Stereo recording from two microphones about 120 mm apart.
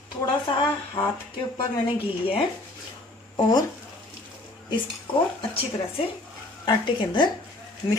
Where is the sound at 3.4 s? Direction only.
35° left (ahead or behind).